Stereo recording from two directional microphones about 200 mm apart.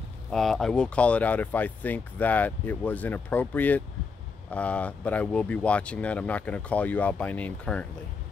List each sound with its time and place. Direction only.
0.3 s speech: centre (ahead or behind)